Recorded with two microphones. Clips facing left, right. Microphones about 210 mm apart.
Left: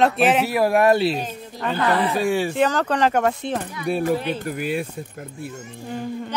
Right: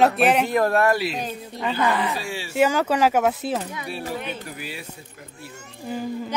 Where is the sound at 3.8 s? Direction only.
50° left (ahead or behind).